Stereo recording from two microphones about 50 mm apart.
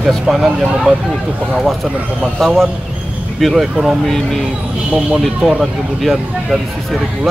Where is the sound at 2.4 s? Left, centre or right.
Centre.